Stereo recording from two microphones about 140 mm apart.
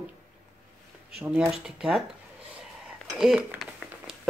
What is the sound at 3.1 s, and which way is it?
Speech, centre (ahead or behind).